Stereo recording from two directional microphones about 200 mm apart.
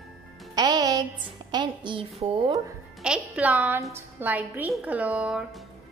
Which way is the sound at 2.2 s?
25° right (ahead or behind).